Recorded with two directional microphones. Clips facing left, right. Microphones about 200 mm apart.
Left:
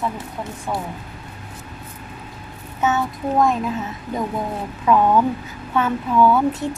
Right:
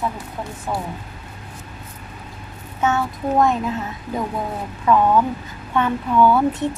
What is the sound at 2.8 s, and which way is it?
Speech, centre (ahead or behind).